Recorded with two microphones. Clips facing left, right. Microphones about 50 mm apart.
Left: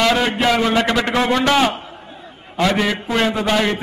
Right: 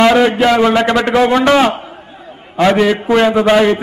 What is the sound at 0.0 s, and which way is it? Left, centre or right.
A man's voice, centre.